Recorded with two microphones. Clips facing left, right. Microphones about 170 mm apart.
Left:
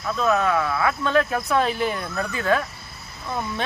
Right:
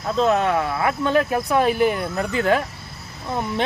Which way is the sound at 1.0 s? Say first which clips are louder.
Right 4 dB; 15° right (ahead or behind).